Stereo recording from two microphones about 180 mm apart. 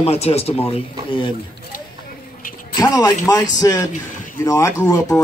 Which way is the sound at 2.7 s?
20° left (ahead or behind).